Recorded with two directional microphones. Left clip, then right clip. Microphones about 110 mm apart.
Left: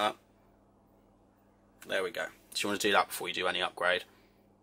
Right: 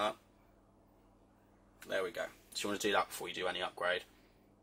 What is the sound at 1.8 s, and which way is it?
Speech, 10° left (ahead or behind).